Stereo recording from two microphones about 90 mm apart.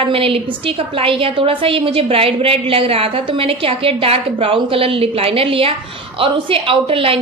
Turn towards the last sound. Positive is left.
turn(degrees=-90)